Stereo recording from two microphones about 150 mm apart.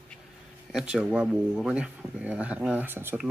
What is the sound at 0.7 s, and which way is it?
Speech, 5° right (ahead or behind).